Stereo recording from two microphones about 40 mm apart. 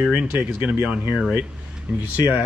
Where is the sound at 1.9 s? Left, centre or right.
Right.